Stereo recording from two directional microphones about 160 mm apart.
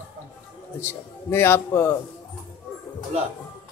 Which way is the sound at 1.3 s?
15° left (ahead or behind).